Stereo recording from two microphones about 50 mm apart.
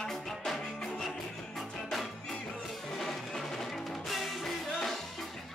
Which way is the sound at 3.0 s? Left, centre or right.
Centre.